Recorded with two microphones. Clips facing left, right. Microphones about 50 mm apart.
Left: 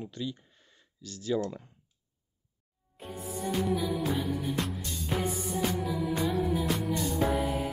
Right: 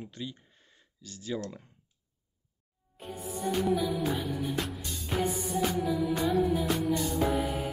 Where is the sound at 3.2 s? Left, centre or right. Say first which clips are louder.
Right 1 dB; centre.